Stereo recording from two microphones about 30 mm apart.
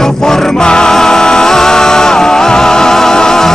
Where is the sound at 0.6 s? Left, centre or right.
Left.